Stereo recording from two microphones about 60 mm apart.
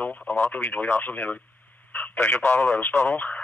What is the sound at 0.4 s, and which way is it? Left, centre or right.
Speech, left.